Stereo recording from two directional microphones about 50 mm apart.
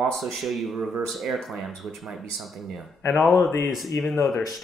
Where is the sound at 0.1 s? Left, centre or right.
Centre.